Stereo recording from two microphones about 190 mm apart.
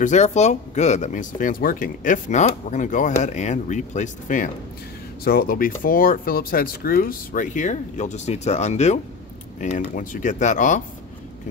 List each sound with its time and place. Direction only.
0.0 s speech: 35° left (ahead or behind)
5.2 s speech: 50° left (ahead or behind)